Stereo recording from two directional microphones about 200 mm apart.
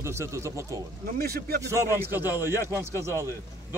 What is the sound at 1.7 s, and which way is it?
Speech, 15° right (ahead or behind).